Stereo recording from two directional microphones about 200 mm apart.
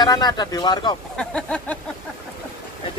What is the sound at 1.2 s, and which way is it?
Speech, 5° left (ahead or behind).